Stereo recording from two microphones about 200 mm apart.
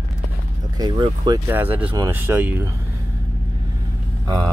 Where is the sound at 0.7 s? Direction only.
20° right (ahead or behind).